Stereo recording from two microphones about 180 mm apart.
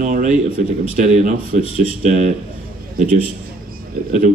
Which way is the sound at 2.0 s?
40° right (ahead or behind).